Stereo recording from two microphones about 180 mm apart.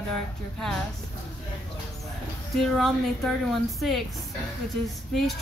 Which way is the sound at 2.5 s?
Centre (ahead or behind).